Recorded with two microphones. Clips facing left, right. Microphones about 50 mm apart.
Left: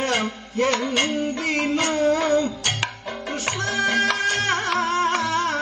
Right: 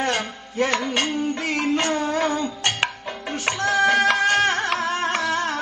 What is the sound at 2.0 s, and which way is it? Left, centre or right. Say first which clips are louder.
Music: left 3 dB; right.